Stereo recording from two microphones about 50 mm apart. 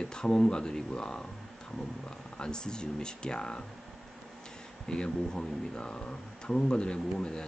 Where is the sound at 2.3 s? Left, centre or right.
Centre.